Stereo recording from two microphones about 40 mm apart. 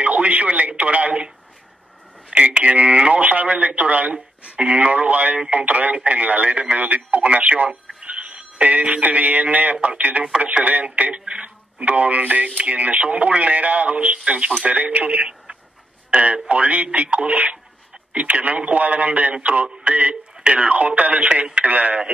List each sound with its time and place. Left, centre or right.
0.0 s speech: right
2.3 s speech: right